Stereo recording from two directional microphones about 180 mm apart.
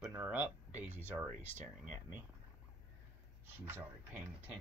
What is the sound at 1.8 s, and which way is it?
Speech, 45° right (ahead or behind).